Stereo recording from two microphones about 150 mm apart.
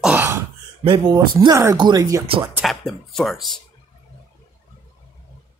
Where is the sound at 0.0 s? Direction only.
10° right (ahead or behind).